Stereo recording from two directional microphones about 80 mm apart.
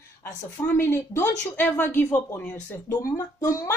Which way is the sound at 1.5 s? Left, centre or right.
Left.